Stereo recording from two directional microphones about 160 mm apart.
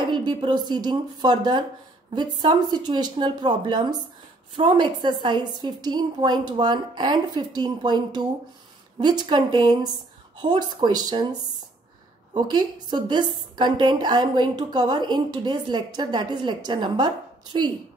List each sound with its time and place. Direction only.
0.1 s a woman's voice: 30° right (ahead or behind)
12.4 s a woman's voice: 25° right (ahead or behind)